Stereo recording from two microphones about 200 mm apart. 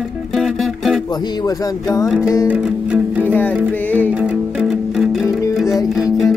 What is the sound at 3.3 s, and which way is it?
Music, 10° left (ahead or behind).